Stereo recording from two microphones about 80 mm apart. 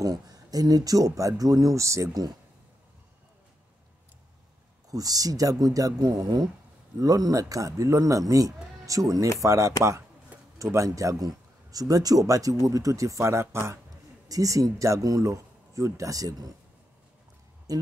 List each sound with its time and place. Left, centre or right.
0.0 s speech: right
4.9 s speech: right
14.3 s speech: right
17.7 s speech: right